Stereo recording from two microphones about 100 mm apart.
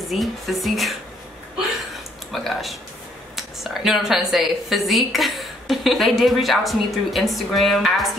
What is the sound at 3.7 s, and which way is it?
A woman's voice, 5° right (ahead or behind).